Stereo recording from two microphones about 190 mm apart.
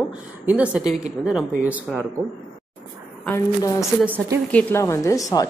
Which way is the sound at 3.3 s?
15° left (ahead or behind).